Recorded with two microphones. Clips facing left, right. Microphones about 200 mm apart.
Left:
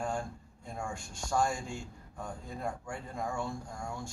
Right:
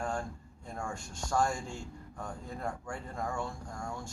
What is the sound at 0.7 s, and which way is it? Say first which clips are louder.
A man's voice: even; 10° left (ahead or behind).